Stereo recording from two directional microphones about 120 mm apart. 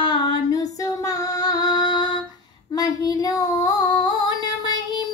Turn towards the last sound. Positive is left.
turn(degrees=35)  # may be behind; listen again after turning